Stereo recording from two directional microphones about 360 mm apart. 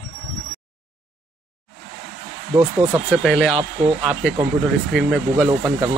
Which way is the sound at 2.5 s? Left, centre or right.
Centre.